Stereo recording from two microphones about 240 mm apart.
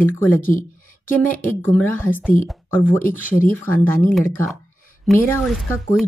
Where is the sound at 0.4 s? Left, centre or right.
Left.